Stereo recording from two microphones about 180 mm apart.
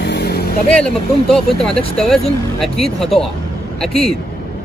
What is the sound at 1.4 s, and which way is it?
Speech, 30° left (ahead or behind).